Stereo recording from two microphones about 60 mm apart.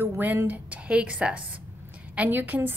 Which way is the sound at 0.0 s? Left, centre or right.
Right.